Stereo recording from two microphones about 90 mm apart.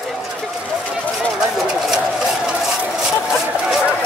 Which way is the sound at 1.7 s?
5° right (ahead or behind).